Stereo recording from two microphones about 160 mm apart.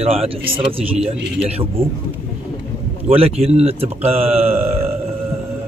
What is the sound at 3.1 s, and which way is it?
A man's voice, 40° right (ahead or behind).